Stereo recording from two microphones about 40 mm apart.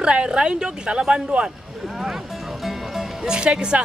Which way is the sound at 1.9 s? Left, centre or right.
Centre.